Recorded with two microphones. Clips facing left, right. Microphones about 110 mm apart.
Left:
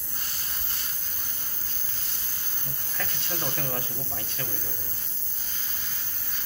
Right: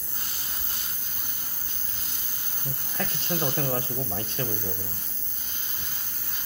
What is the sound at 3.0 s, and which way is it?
Speech, 35° right (ahead or behind).